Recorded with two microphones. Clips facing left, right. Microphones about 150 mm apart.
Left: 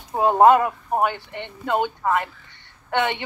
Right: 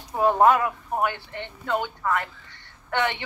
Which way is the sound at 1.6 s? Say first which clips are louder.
Left 4 dB; 20° left (ahead or behind).